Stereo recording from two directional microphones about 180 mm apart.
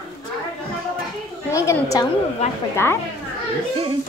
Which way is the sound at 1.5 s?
20° left (ahead or behind).